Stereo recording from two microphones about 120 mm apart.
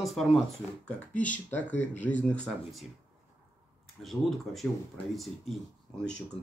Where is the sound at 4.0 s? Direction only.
Centre (ahead or behind).